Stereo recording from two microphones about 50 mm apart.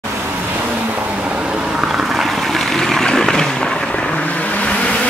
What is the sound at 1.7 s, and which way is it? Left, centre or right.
Vehicle, centre.